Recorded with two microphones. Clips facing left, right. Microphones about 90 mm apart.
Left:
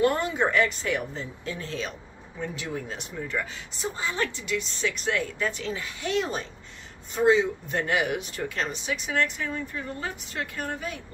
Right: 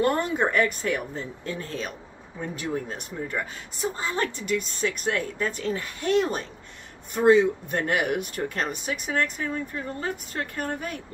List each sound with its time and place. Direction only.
0.0 s a woman's voice: 45° right (ahead or behind)